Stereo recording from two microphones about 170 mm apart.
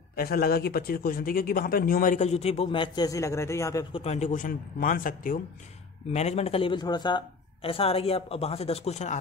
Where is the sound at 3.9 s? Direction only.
40° left (ahead or behind).